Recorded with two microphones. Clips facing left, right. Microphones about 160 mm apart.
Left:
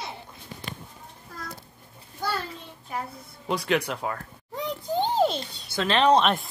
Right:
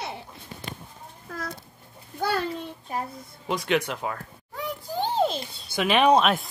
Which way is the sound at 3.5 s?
Centre (ahead or behind).